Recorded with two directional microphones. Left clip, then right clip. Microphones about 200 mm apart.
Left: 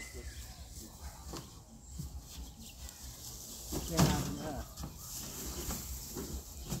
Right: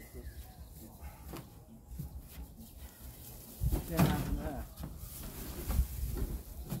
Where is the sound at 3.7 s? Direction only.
10° right (ahead or behind).